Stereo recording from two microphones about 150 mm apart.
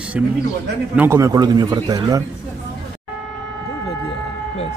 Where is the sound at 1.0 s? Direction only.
20° right (ahead or behind).